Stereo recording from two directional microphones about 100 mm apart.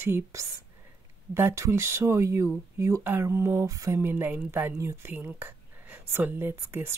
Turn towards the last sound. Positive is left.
turn(degrees=-25)  # may be behind; listen again after turning